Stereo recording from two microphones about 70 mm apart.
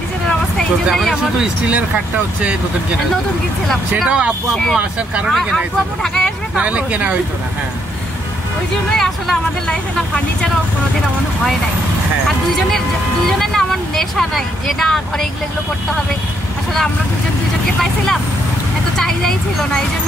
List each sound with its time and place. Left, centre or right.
4.0 s speech: centre
5.3 s speech: centre
6.5 s speech: centre
8.9 s speech: centre
12.5 s speech: centre
18.9 s speech: centre